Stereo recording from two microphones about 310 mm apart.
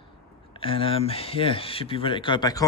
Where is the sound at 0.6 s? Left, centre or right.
Centre.